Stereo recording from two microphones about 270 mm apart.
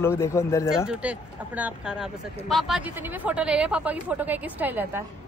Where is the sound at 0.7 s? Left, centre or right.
Centre.